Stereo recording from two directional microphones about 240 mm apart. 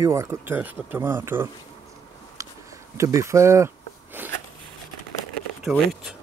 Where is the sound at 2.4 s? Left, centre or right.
Centre.